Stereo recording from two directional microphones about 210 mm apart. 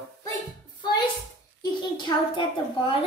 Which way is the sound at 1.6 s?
20° left (ahead or behind).